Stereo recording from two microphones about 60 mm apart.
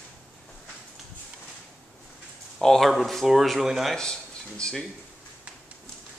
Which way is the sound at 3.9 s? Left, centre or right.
Centre.